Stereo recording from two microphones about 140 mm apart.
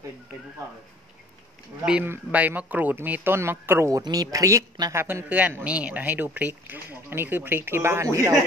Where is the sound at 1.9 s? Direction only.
10° right (ahead or behind).